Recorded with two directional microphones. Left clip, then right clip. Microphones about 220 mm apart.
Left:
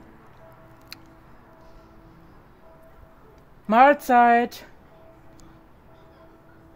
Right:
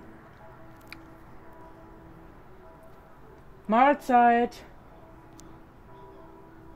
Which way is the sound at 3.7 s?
25° left (ahead or behind).